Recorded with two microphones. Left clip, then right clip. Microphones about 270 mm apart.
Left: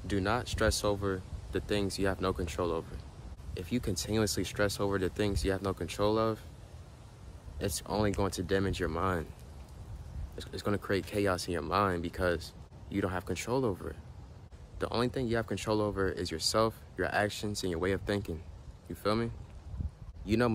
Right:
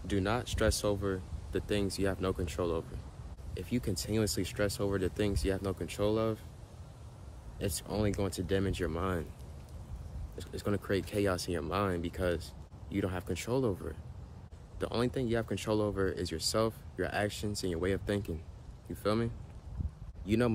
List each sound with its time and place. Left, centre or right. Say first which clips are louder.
0.0 s speech: left 1 dB; centre
7.5 s speech: left 3 dB; centre
10.6 s speech: left 1 dB; centre